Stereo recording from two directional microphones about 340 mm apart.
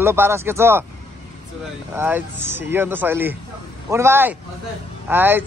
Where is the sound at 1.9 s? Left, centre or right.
Centre.